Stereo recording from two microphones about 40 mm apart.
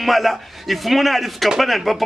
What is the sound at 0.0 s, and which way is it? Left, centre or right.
A man's voice, centre.